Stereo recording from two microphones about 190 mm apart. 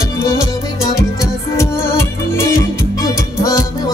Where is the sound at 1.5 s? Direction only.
15° left (ahead or behind).